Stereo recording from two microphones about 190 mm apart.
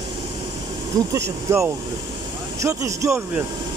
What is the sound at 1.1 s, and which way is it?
Speech, 15° right (ahead or behind).